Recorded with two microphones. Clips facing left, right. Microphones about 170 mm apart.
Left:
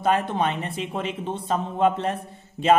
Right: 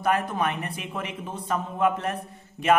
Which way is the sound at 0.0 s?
25° left (ahead or behind).